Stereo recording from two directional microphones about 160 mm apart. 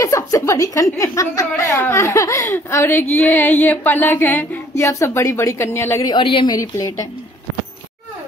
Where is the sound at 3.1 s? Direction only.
10° left (ahead or behind).